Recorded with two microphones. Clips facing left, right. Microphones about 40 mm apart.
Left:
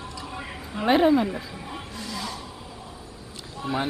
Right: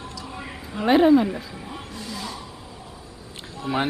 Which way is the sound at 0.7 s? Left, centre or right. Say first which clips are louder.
Right 3 dB; centre.